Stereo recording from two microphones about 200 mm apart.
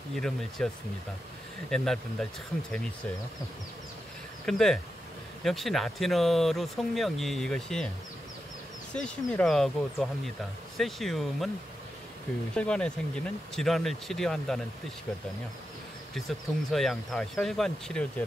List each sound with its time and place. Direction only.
0.1 s speech: centre (ahead or behind)
1.7 s speech: centre (ahead or behind)
4.5 s speech: centre (ahead or behind)
8.9 s speech: 5° left (ahead or behind)
12.5 s speech: 5° left (ahead or behind)
16.2 s speech: centre (ahead or behind)